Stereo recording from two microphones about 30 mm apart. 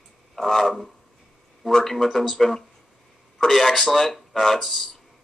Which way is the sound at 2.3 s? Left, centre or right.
Centre.